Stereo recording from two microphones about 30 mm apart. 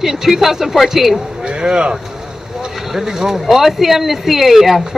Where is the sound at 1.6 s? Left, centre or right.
Right.